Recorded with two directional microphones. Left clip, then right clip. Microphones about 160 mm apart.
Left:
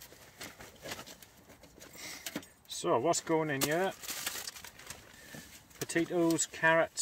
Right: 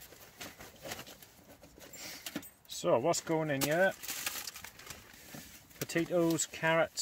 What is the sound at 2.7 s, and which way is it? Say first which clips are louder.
Speech: even; 50° right (ahead or behind).